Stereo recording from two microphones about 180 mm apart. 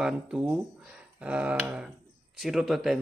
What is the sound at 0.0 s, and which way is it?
Speech, 5° right (ahead or behind).